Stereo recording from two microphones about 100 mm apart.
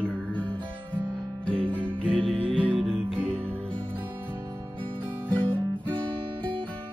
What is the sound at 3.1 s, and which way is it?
Music, 20° right (ahead or behind).